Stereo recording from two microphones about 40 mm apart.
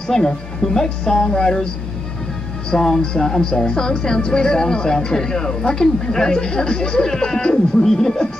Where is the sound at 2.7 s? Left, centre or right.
Centre.